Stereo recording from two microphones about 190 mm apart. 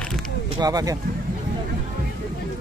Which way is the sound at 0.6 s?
20° right (ahead or behind).